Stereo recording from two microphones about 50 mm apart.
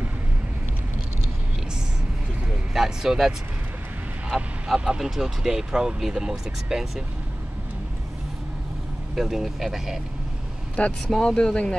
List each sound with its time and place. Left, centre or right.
2.7 s speech: centre
4.7 s speech: centre
9.1 s speech: centre
11.1 s speech: centre